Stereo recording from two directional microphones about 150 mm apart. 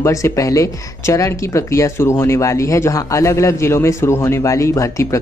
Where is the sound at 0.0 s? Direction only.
20° left (ahead or behind).